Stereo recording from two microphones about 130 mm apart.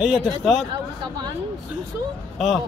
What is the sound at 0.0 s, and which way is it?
Speech, 5° right (ahead or behind).